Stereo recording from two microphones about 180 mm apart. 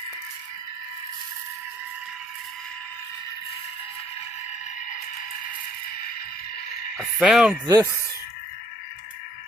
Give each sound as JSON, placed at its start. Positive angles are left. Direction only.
{"t": 7.0, "sound": "speech", "side_deg": -5}
{"t": 7.6, "sound": "speech", "side_deg": -20}